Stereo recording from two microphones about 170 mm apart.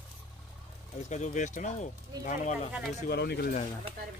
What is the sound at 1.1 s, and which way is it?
Speech, 45° left (ahead or behind).